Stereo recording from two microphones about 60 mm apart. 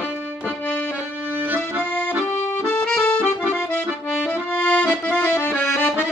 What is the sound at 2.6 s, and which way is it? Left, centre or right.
Accordion, centre.